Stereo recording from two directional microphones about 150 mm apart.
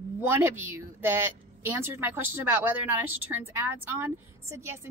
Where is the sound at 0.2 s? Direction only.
15° right (ahead or behind).